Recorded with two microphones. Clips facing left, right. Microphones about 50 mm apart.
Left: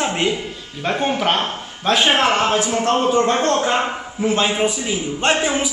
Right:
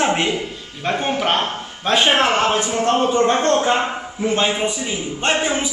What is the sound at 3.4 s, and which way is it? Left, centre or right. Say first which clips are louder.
Speech: right 1 dB; centre.